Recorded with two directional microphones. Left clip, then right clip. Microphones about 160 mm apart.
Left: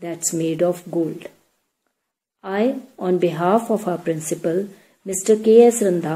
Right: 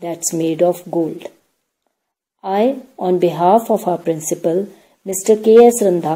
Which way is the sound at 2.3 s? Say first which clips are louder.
Right 5 dB; 40° right (ahead or behind).